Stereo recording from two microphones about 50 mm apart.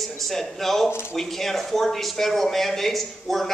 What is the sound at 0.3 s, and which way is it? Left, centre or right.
A man's voice, centre.